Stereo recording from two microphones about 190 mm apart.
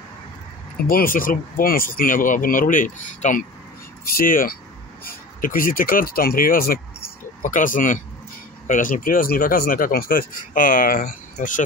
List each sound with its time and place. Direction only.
0.8 s speech: 50° left (ahead or behind)